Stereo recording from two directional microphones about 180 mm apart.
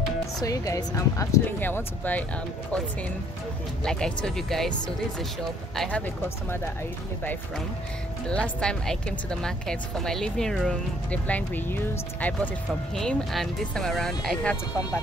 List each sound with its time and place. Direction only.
0.4 s speech: 20° left (ahead or behind)
3.8 s a woman's voice: 5° left (ahead or behind)
8.3 s a woman's voice: 5° left (ahead or behind)